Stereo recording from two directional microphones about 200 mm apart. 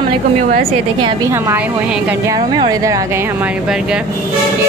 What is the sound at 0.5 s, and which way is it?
Speech, 30° right (ahead or behind).